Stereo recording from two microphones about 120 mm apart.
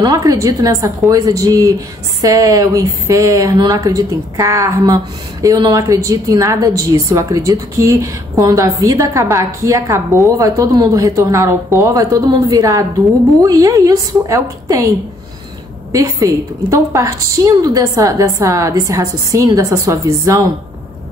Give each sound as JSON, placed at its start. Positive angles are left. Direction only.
{"t": 0.0, "sound": "a woman's voice", "side_deg": -30}
{"t": 15.9, "sound": "a woman's voice", "side_deg": -25}